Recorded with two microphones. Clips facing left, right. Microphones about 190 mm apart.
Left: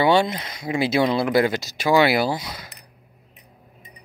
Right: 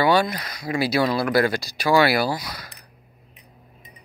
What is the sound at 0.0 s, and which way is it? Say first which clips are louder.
Speech: left 1 dB; 25° left (ahead or behind).